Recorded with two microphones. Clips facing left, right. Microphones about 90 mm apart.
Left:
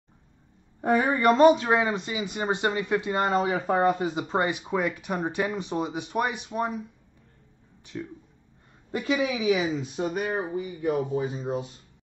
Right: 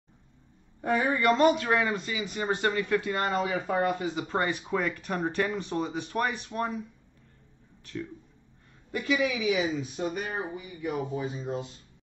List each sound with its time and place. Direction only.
0.7 s speech: 35° left (ahead or behind); by 3.2 s 20° left (ahead or behind)
3.3 s speech: 40° left (ahead or behind)
4.0 s speech: 25° left (ahead or behind)
4.4 s speech: 10° left (ahead or behind)
7.8 s speech: 10° left (ahead or behind)
8.9 s speech: 35° left (ahead or behind)
11.4 s speech: 20° left (ahead or behind)